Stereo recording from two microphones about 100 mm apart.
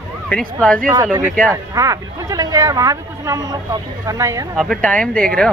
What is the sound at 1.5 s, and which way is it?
Speech, 35° right (ahead or behind).